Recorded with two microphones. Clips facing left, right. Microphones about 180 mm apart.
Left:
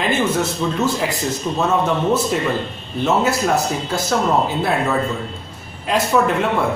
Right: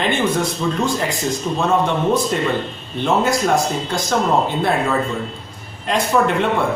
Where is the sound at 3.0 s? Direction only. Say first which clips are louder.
Even; 5° left (ahead or behind).